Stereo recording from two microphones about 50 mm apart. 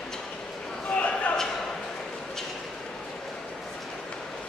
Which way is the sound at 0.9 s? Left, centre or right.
Left.